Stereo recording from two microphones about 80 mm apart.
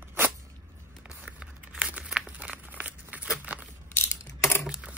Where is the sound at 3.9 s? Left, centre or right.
Left.